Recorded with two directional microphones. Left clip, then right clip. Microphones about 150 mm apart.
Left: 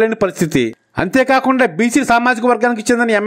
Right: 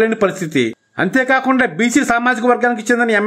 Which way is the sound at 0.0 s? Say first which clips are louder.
Even; 40° left (ahead or behind).